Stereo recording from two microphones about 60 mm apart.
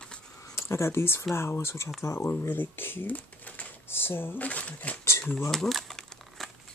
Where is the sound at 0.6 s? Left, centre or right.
Left.